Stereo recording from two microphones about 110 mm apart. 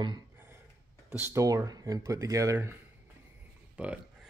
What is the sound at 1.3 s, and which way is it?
Speech, 30° right (ahead or behind).